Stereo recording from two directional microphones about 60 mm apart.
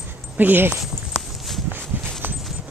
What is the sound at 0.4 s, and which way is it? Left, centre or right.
Speech, right.